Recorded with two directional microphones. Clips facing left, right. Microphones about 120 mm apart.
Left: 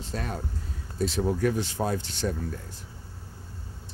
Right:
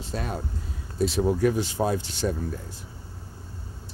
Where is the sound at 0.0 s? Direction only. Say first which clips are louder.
Right 2 dB; 15° right (ahead or behind).